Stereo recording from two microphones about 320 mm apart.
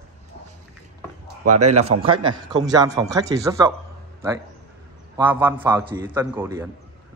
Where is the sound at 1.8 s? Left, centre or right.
Centre.